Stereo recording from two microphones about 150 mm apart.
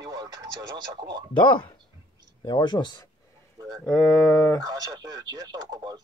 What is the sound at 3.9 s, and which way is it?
Speech, 5° left (ahead or behind).